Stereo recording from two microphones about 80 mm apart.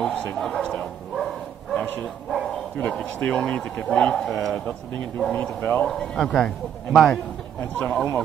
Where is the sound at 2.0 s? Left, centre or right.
Centre.